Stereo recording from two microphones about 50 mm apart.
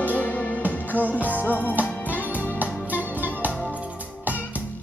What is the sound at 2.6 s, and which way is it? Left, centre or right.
Music, right.